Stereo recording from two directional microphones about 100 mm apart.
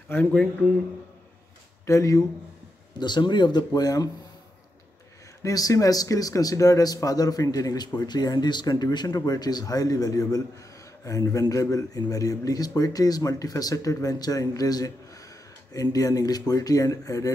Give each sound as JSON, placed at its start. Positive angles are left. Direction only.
{"t": 0.1, "sound": "speech", "side_deg": 20}
{"t": 1.9, "sound": "speech", "side_deg": 30}
{"t": 3.0, "sound": "speech", "side_deg": 45}
{"t": 5.4, "sound": "speech", "side_deg": 35}